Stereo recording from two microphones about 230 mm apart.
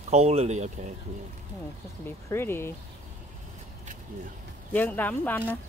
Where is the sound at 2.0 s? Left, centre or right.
Centre.